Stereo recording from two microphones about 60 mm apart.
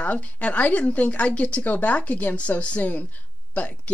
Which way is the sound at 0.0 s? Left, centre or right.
Left.